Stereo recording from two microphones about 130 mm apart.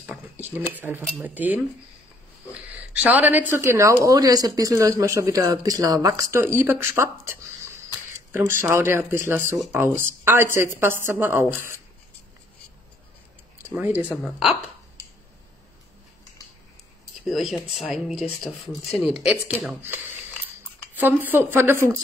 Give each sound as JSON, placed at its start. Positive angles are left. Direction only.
{"t": 0.0, "sound": "a sound", "side_deg": -15}
{"t": 0.7, "sound": "a woman's voice", "side_deg": -15}
{"t": 2.6, "sound": "speech", "side_deg": -10}
{"t": 8.3, "sound": "a woman's voice", "side_deg": -20}
{"t": 13.6, "sound": "speech", "side_deg": -15}
{"t": 14.2, "sound": "speech", "side_deg": 0}
{"t": 17.3, "sound": "speech", "side_deg": 0}
{"t": 19.8, "sound": "a woman's voice", "side_deg": -15}